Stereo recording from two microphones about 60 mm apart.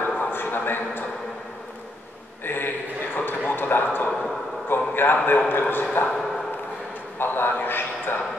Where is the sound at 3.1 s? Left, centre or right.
Left.